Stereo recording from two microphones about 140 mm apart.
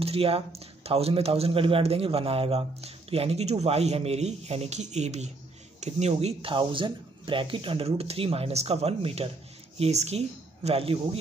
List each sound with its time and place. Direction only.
0.0 s a man's voice: 45° right (ahead or behind)